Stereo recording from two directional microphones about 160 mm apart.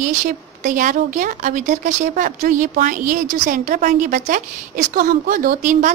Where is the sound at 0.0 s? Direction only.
50° right (ahead or behind).